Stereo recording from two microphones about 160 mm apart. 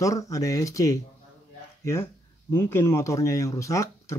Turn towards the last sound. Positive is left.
turn(degrees=20)  # may be behind; listen again after turning